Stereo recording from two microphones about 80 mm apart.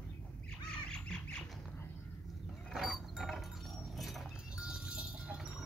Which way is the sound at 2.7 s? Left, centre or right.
Centre.